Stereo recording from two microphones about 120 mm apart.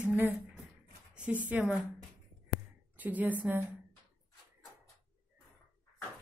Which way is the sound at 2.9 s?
15° right (ahead or behind).